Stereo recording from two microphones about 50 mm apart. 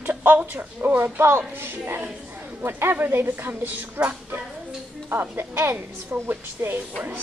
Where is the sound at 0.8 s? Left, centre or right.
Right.